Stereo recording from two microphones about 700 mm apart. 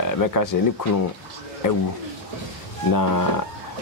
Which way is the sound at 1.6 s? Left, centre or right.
Left.